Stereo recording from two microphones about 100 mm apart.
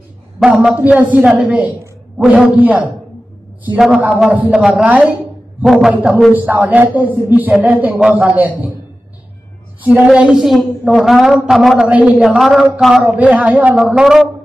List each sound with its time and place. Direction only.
0.4 s a man's voice: 10° right (ahead or behind)
3.7 s a man's voice: 5° right (ahead or behind)
9.9 s a man's voice: 5° right (ahead or behind)
13.0 s a man's voice: 15° right (ahead or behind)